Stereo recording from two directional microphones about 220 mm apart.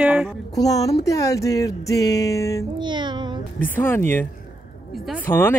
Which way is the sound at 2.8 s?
20° right (ahead or behind).